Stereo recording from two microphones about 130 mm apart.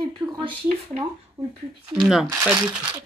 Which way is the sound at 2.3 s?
20° right (ahead or behind).